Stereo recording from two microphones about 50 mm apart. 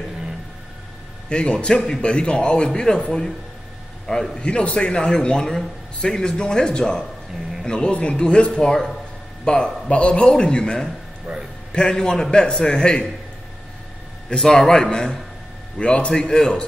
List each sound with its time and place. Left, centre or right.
1.3 s a man's voice: left
1.7 s a man's voice: centre
4.0 s a man's voice: centre
11.3 s a man's voice: centre
11.7 s a man's voice: centre
14.3 s a man's voice: centre